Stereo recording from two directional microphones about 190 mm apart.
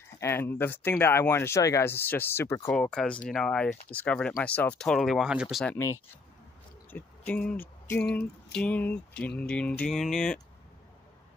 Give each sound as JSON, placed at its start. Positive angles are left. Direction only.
{"t": 0.2, "sound": "speech", "side_deg": 10}
{"t": 6.9, "sound": "speech", "side_deg": 10}